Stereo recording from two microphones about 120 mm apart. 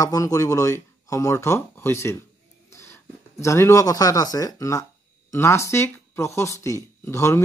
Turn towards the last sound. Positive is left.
turn(degrees=25)  # may be behind; listen again after turning